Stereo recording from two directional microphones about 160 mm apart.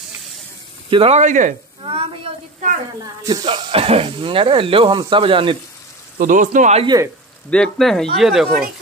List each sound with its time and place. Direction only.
0.8 s speech: 35° right (ahead or behind)
1.8 s sizzle: 35° right (ahead or behind)
3.3 s speech: 30° right (ahead or behind)
6.1 s speech: 55° right (ahead or behind)
7.5 s speech: 5° left (ahead or behind)